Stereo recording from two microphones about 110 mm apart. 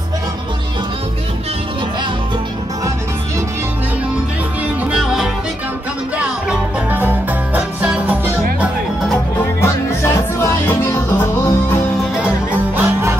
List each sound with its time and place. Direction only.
4.9 s music: 5° right (ahead or behind)
9.6 s music: 25° left (ahead or behind)
12.7 s music: 20° right (ahead or behind)